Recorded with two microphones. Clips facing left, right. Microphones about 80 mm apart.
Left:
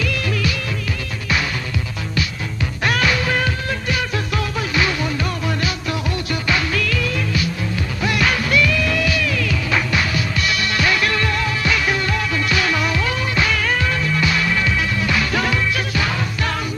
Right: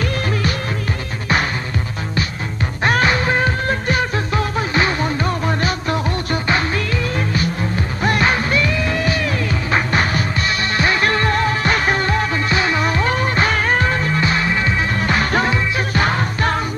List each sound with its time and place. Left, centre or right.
0.0 s music: right
2.8 s music: right